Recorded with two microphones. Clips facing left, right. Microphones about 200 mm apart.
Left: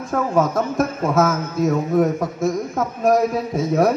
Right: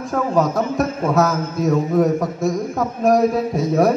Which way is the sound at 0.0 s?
Centre (ahead or behind).